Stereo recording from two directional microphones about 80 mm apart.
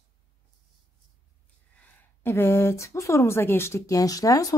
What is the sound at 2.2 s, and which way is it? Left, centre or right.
Speech, left.